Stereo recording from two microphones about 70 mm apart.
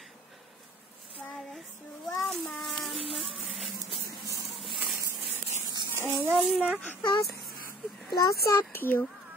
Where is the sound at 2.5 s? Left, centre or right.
Centre.